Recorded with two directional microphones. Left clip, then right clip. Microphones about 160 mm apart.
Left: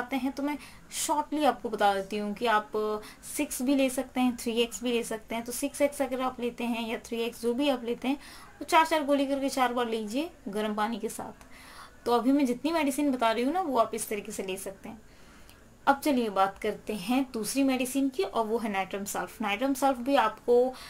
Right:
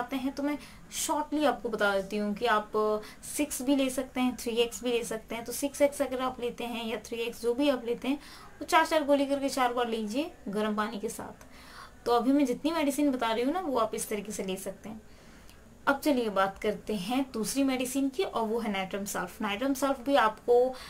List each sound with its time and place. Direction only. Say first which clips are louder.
0.1 s speech: left 1 dB; 20° left (ahead or behind)
15.8 s speech: left 2 dB; 20° left (ahead or behind)